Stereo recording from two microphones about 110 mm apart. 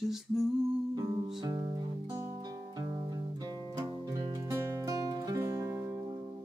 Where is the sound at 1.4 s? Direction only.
35° right (ahead or behind).